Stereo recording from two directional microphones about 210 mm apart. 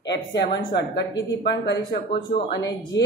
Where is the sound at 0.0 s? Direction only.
55° left (ahead or behind).